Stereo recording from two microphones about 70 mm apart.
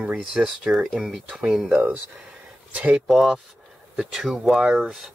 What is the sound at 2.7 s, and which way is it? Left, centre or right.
Speech, centre.